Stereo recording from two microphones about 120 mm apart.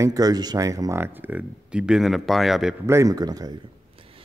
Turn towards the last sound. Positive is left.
turn(degrees=-35)  # may be behind; listen again after turning